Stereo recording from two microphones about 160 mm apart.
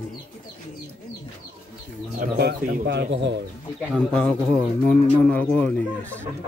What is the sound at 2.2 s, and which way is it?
Speech, 90° right.